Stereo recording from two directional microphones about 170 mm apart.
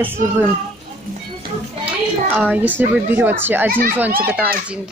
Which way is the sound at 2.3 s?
5° right (ahead or behind).